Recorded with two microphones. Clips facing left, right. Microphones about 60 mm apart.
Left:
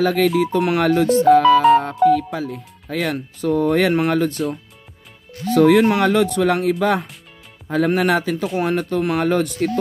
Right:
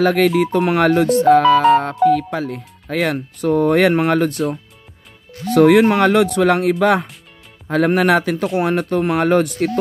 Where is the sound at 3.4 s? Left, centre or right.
Right.